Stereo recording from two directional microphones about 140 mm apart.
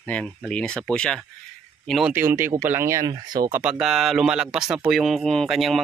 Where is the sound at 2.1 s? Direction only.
15° right (ahead or behind).